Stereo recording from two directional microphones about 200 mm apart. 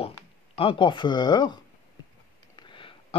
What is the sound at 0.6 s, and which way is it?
Speech, 25° left (ahead or behind).